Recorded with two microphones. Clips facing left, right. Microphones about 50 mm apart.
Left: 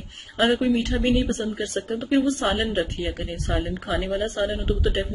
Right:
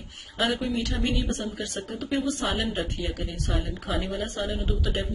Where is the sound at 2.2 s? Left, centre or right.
Left.